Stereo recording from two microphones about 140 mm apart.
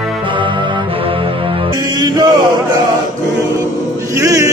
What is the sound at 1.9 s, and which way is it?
Chant, 30° right (ahead or behind).